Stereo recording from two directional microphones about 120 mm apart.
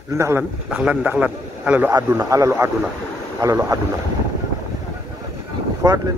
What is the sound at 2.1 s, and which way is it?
Speech, 25° right (ahead or behind).